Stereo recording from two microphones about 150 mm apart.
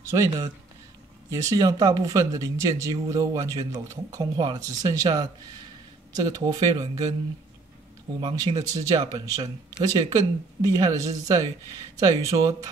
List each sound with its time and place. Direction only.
0.1 s speech: 20° right (ahead or behind)
8.2 s speech: 30° right (ahead or behind)